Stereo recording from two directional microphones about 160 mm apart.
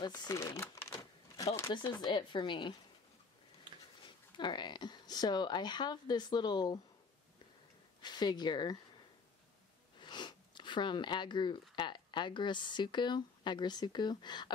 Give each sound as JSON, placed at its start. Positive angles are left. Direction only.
{"t": 0.0, "sound": "typewriter", "side_deg": 25}
{"t": 1.7, "sound": "a woman's voice", "side_deg": 25}
{"t": 4.4, "sound": "a woman's voice", "side_deg": 30}
{"t": 8.0, "sound": "a woman's voice", "side_deg": 25}
{"t": 9.9, "sound": "speech", "side_deg": 30}